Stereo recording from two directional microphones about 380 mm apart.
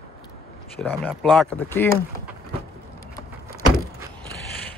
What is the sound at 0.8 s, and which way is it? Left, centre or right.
Speech, centre.